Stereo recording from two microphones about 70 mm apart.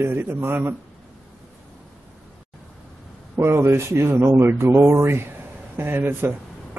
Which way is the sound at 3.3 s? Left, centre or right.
Right.